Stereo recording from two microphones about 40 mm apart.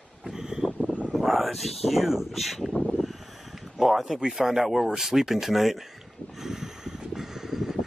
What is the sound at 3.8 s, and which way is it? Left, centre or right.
Speech, centre.